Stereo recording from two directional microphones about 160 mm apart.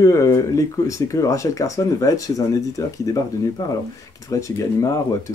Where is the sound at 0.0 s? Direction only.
20° left (ahead or behind).